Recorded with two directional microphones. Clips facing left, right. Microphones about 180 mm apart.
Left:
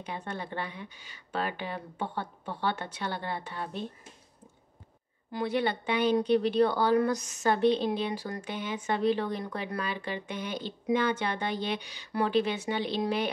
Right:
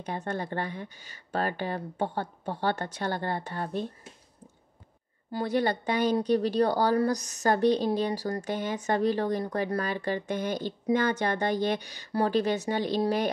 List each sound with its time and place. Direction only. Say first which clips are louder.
0.0 s speech: right 4 dB; 45° right (ahead or behind)
5.3 s speech: right 2 dB; 40° right (ahead or behind)